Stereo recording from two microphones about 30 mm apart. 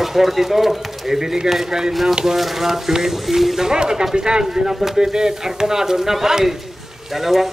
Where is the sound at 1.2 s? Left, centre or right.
Centre.